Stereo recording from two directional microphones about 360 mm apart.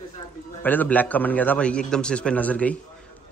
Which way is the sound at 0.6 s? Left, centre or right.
Centre.